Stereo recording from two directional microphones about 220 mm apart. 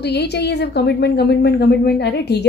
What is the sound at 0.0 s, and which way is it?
A woman's voice, 50° left (ahead or behind).